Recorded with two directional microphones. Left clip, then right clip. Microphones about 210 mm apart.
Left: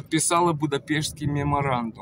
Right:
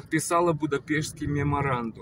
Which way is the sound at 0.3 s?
25° left (ahead or behind).